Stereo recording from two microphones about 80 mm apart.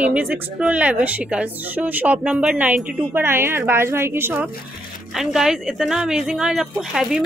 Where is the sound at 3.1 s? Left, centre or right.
Right.